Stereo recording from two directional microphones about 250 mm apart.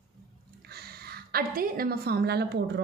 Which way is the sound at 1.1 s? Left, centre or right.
Right.